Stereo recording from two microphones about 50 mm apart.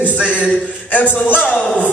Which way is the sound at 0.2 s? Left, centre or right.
Right.